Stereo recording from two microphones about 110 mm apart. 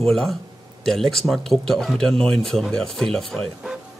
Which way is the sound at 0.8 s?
5° left (ahead or behind).